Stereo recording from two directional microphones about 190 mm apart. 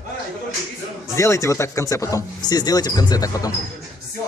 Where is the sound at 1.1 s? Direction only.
15° left (ahead or behind).